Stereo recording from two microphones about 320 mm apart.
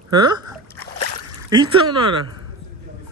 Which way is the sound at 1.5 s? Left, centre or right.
Centre.